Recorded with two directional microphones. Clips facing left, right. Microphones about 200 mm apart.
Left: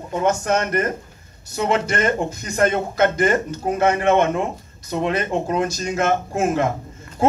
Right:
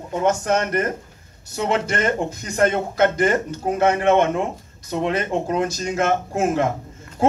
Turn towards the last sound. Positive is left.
turn(degrees=-30)  # may be behind; listen again after turning